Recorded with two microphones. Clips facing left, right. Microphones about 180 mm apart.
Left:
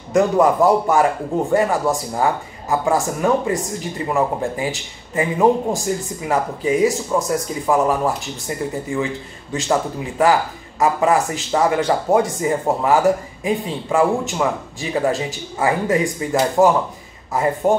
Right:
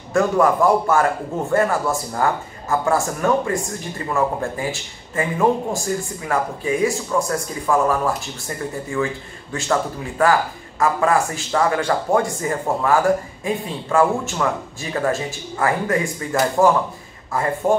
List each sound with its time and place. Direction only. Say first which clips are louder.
0.1 s speech: left 2 dB; 20° left (ahead or behind)